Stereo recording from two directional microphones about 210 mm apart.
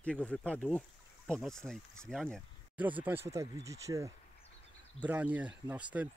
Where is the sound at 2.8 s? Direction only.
10° right (ahead or behind).